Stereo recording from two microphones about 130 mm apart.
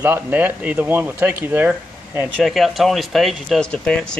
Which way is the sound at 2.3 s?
Centre (ahead or behind).